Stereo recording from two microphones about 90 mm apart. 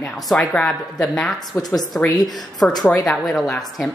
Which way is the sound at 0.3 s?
5° left (ahead or behind).